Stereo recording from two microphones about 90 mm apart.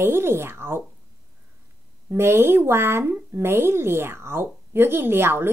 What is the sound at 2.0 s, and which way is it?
Speech, 30° right (ahead or behind).